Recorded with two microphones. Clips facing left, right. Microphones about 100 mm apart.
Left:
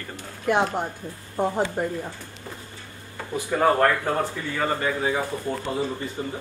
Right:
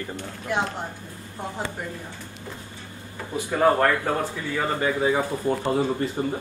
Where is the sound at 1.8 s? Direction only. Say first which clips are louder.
Left 7 dB; 40° left (ahead or behind).